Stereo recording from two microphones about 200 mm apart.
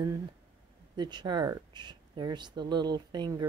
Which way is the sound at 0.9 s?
20° right (ahead or behind).